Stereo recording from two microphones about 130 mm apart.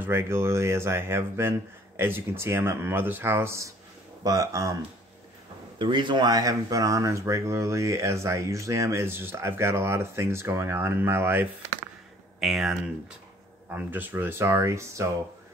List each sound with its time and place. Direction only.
0.0 s speech: 20° right (ahead or behind)
5.8 s speech: 35° right (ahead or behind); by 11.4 s 20° right (ahead or behind)
12.4 s speech: centre (ahead or behind)
13.7 s speech: 15° right (ahead or behind)